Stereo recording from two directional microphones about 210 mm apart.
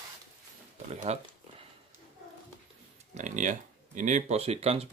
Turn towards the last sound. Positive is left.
turn(degrees=-30)  # may be behind; listen again after turning